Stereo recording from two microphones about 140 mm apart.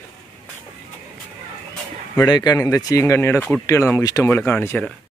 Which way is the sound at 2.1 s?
30° left (ahead or behind).